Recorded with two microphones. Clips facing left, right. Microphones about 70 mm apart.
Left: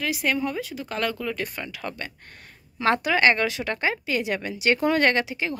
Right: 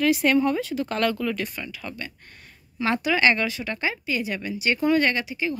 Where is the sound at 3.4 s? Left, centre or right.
Left.